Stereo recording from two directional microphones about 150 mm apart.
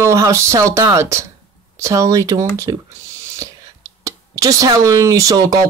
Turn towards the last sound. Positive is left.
turn(degrees=-20)  # may be behind; listen again after turning